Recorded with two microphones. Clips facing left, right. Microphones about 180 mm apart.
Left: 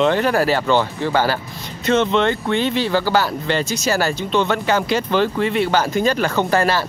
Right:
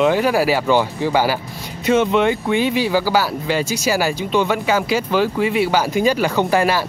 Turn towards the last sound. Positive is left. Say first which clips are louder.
# right 1 dB
turn(degrees=-10)  # may be behind; listen again after turning